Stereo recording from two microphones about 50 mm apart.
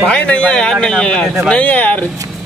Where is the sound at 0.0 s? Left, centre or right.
Left.